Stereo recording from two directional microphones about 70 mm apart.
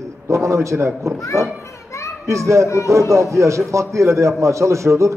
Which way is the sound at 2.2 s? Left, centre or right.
Right.